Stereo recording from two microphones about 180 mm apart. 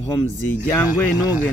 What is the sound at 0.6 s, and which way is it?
Speech, 10° left (ahead or behind).